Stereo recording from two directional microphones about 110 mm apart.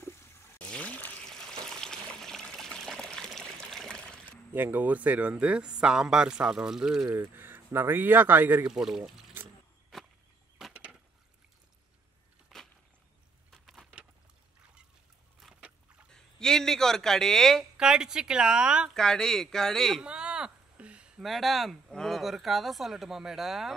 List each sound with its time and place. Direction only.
0.0 s water: 25° left (ahead or behind)
0.6 s water: 10° left (ahead or behind)
4.5 s speech: 15° right (ahead or behind)
7.1 s speech: 20° right (ahead or behind)
8.6 s speech: 5° right (ahead or behind)
9.9 s whip: centre (ahead or behind)
10.7 s wood: 10° right (ahead or behind)
12.5 s a sound: centre (ahead or behind)
15.4 s boat: 10° right (ahead or behind)
16.1 s a sound: 5° left (ahead or behind)
17.7 s speech: 5° right (ahead or behind)
18.9 s speech: 5° left (ahead or behind)
20.0 s speech: 10° right (ahead or behind)